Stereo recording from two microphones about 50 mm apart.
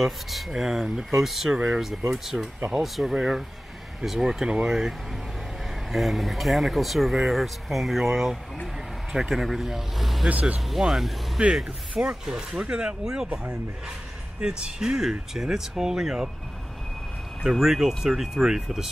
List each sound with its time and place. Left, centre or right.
0.0 s speech: centre
11.4 s speech: right
13.3 s speech: right
14.4 s speech: centre
17.4 s speech: centre